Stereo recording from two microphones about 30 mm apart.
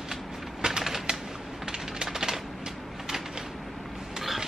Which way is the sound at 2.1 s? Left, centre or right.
Centre.